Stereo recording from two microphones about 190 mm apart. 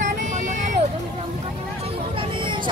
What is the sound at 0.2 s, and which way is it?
Vehicle, 40° right (ahead or behind).